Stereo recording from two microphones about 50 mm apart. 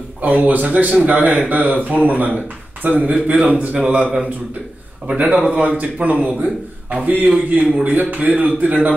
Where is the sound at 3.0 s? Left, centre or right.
Right.